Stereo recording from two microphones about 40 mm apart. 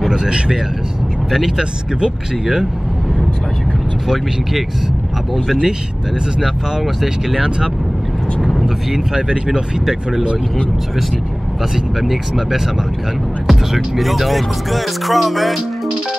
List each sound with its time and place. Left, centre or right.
0.1 s speech: centre
1.6 s speech: right
5.5 s speech: centre
8.5 s vehicle: centre
9.5 s speech: centre
11.7 s speech: centre